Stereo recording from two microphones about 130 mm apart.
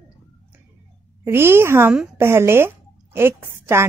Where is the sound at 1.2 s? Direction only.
20° right (ahead or behind).